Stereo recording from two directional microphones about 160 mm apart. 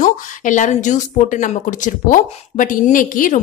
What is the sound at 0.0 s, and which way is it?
Speech, 50° left (ahead or behind).